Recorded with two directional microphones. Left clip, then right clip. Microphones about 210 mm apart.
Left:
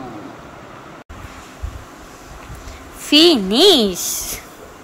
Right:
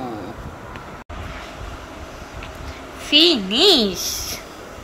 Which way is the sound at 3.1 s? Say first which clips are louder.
Left 3 dB; 20° left (ahead or behind).